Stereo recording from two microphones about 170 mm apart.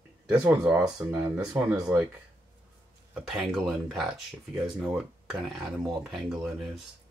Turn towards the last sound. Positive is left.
turn(degrees=0)  # may be behind; listen again after turning